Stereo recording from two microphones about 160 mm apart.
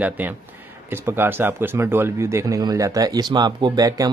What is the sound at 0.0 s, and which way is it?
Speech, 10° right (ahead or behind).